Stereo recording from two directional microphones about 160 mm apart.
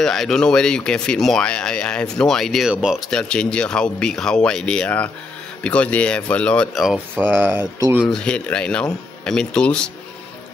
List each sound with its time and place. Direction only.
0.0 s speech: centre (ahead or behind)
7.2 s speech: 10° right (ahead or behind)
8.1 s speech: 5° left (ahead or behind)